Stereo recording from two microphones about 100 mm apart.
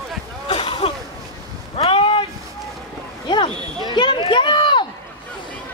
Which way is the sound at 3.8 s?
50° left (ahead or behind).